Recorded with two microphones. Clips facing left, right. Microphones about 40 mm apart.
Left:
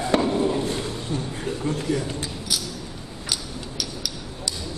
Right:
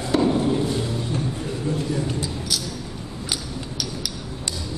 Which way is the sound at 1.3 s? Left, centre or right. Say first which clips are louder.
Right 1 dB; left.